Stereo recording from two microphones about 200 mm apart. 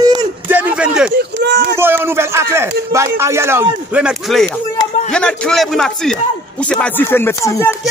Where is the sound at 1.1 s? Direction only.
55° right (ahead or behind).